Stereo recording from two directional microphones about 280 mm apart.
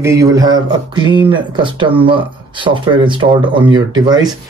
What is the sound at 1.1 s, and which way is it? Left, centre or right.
Speech, centre.